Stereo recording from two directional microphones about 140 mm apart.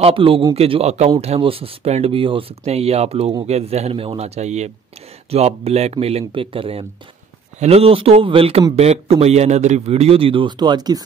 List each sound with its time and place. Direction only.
0.0 s a man's voice: 40° right (ahead or behind)